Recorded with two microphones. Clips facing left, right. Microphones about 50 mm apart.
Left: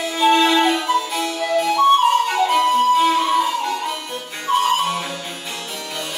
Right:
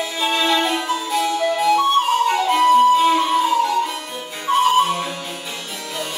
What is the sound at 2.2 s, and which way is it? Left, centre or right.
Flute, centre.